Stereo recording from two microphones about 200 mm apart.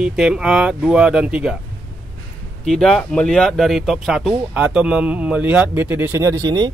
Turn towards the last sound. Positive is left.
turn(degrees=-20)  # may be behind; listen again after turning